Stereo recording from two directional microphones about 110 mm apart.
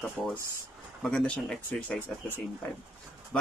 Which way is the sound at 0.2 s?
5° left (ahead or behind).